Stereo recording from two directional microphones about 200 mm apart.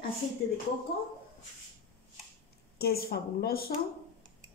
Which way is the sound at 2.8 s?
50° left (ahead or behind).